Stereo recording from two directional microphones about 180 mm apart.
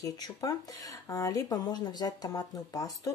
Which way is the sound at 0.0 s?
20° left (ahead or behind).